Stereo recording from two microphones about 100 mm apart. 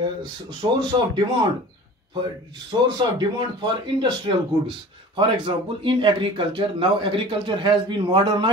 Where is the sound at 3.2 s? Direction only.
50° right (ahead or behind).